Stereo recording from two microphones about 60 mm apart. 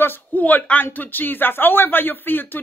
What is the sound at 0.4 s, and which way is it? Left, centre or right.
Speech, left.